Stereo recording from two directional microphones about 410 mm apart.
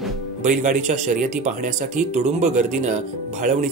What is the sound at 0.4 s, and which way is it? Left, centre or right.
Speech, centre.